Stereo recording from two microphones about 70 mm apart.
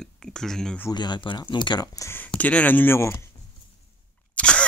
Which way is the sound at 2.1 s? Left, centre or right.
Left.